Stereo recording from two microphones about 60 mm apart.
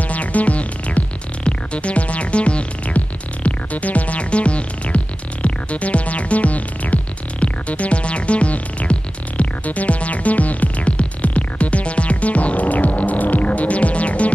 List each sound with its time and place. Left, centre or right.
0.0 s music: left